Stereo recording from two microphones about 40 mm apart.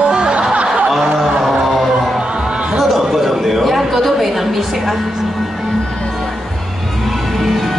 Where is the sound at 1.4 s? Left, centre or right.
Centre.